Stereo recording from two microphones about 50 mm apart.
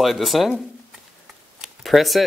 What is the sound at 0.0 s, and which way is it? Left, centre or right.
Speech, centre.